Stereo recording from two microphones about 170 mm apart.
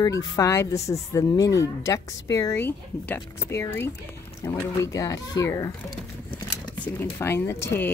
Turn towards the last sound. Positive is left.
turn(degrees=15)  # may be behind; listen again after turning